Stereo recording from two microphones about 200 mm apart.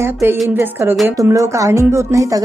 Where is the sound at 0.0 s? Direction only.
15° right (ahead or behind).